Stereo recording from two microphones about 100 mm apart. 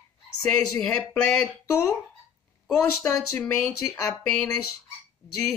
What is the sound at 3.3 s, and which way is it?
Speech, 15° left (ahead or behind).